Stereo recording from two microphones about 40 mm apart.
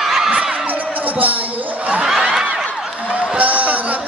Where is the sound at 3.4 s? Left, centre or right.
Right.